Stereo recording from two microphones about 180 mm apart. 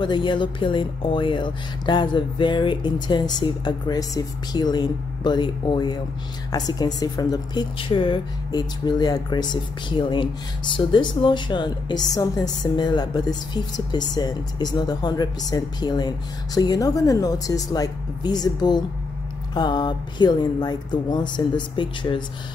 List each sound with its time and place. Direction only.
0.0 s speech: 25° left (ahead or behind)